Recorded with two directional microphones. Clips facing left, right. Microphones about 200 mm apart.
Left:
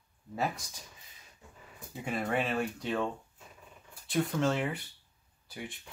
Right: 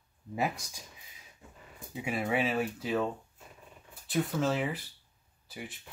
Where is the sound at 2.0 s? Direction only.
5° right (ahead or behind).